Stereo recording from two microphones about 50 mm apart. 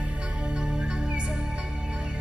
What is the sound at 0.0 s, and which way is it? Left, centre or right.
Music, right.